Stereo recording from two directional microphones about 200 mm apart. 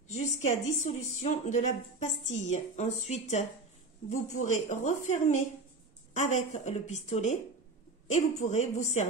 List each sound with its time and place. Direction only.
0.1 s speech: 35° left (ahead or behind)